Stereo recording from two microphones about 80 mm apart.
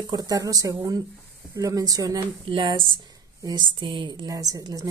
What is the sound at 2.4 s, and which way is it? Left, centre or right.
Speech, right.